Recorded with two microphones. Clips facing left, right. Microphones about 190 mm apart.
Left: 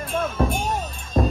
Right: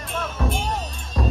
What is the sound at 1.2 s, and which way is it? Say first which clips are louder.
Music: left 4 dB; 50° left (ahead or behind).